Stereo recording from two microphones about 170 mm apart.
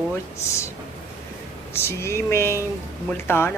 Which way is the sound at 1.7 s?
15° left (ahead or behind).